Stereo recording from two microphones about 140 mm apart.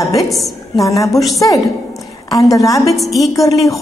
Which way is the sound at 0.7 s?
25° left (ahead or behind).